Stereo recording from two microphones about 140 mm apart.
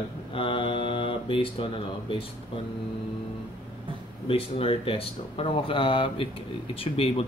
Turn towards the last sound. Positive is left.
turn(degrees=40)  # may be behind; listen again after turning